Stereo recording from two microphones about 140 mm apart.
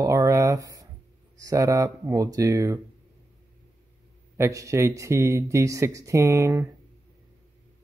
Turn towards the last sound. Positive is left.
turn(degrees=-20)  # may be behind; listen again after turning